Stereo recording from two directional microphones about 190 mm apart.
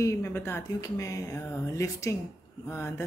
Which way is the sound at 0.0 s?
15° left (ahead or behind).